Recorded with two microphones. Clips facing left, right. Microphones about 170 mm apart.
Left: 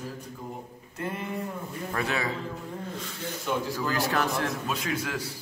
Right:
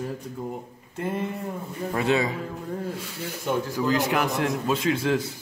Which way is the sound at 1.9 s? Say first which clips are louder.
Right 6 dB; 20° right (ahead or behind).